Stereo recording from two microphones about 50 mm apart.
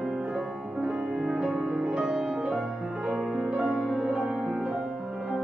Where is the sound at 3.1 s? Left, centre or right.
Right.